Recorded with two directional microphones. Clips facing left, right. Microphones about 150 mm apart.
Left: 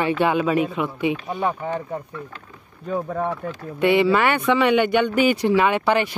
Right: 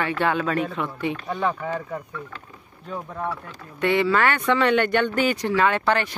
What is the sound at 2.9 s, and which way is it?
Speech, 55° left (ahead or behind).